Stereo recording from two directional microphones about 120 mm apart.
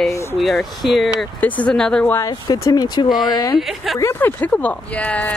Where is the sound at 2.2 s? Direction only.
30° left (ahead or behind).